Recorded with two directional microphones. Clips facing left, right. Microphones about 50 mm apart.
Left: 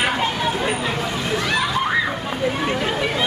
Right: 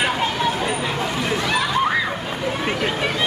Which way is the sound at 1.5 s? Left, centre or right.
Centre.